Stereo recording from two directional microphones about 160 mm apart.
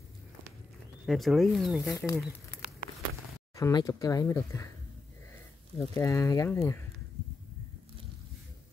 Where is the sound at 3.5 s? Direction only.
25° left (ahead or behind).